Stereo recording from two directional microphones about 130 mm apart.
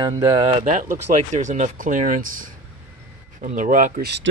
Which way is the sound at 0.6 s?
90° right.